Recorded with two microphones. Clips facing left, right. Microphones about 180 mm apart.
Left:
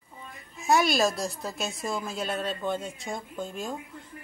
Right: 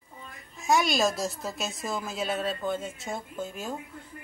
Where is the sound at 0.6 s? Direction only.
Centre (ahead or behind).